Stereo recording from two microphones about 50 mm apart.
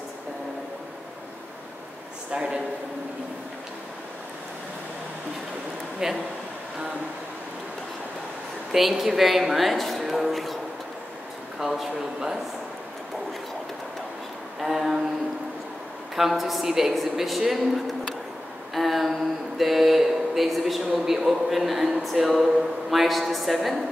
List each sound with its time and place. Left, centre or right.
2.3 s a man's voice: centre
6.0 s a man's voice: centre
8.7 s speech: centre
11.6 s speech: centre
14.6 s a sound: centre
16.2 s speech: centre
18.8 s a sound: centre
20.8 s speech: centre